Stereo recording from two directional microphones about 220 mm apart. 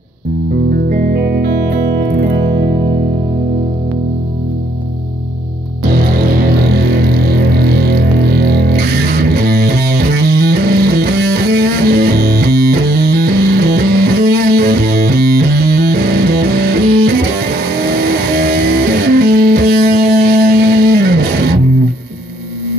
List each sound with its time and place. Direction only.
0.8 s music: 40° right (ahead or behind)
6.9 s music: 45° right (ahead or behind)
18.3 s music: 45° right (ahead or behind)